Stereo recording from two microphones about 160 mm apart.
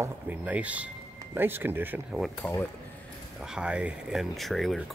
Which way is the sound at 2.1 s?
Centre (ahead or behind).